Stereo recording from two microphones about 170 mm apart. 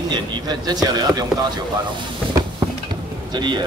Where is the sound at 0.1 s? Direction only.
25° right (ahead or behind).